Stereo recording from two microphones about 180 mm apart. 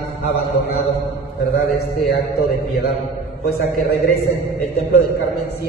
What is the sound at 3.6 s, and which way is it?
Speech, 55° left (ahead or behind).